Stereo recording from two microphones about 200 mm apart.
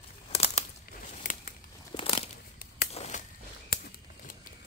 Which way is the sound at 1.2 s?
40° left (ahead or behind).